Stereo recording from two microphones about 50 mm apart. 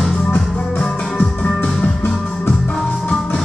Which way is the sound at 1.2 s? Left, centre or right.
Left.